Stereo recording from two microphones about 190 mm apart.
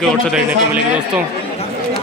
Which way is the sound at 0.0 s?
5° right (ahead or behind).